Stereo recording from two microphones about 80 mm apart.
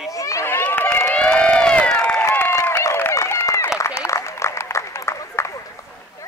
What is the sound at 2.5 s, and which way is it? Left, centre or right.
Applause, left.